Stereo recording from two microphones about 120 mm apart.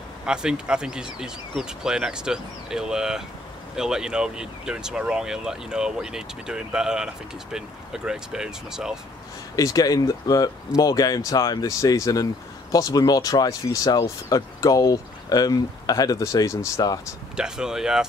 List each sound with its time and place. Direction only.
0.2 s speech: 5° right (ahead or behind)
9.6 s speech: 30° left (ahead or behind)
17.4 s speech: 5° right (ahead or behind)